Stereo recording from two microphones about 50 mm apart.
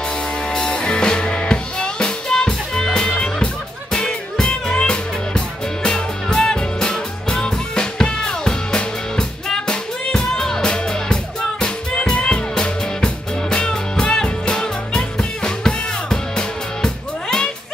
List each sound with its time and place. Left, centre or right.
0.5 s music: centre